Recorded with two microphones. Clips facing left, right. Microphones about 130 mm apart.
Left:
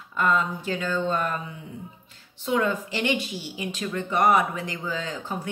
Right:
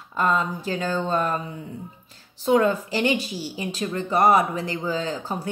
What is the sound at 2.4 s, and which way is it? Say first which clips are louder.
A woman's voice: right 5 dB; 35° right (ahead or behind).